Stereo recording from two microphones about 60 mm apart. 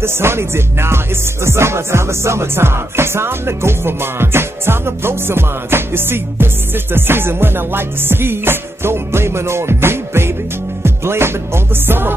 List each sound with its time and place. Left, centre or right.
0.0 s music: right